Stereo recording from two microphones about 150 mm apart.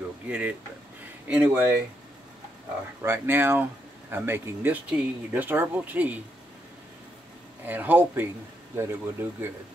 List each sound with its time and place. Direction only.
0.3 s speech: 10° right (ahead or behind)
3.0 s speech: 15° right (ahead or behind)
7.6 s speech: 10° right (ahead or behind)